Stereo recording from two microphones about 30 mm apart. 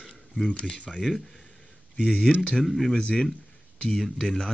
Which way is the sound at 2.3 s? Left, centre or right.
Centre.